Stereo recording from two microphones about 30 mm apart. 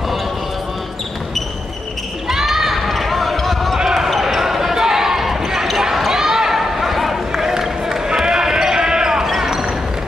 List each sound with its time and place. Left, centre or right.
2.2 s basketball bounce: centre
3.7 s basketball bounce: centre
5.9 s a sound: centre
7.4 s basketball bounce: centre